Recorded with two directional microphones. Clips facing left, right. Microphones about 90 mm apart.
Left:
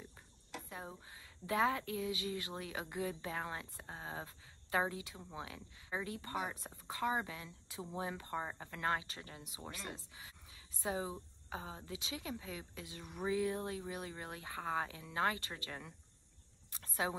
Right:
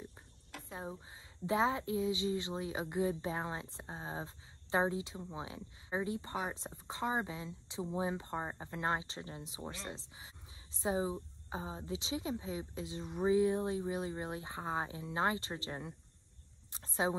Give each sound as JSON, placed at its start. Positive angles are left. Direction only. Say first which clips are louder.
{"t": 0.7, "sound": "a woman's voice", "louder": "right 8 dB", "side_deg": -25}